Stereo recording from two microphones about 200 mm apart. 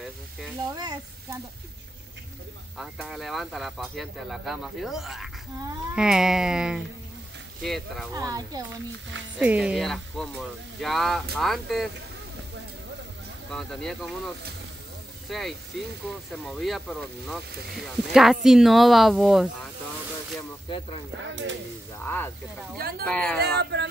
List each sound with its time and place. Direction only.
0.7 s speech: 20° right (ahead or behind)
2.8 s speech: centre (ahead or behind)
8.1 s speech: 15° right (ahead or behind)
9.4 s speech: 5° right (ahead or behind)
13.5 s speech: centre (ahead or behind)
22.0 s speech: 10° left (ahead or behind)
22.8 s speech: 50° right (ahead or behind)
23.0 s speech: 5° left (ahead or behind)
23.4 s speech: 55° right (ahead or behind)